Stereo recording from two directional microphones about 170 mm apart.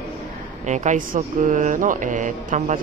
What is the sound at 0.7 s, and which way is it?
Speech, 45° right (ahead or behind).